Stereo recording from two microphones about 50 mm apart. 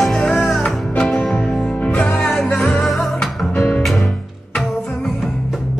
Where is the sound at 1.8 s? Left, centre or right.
Left.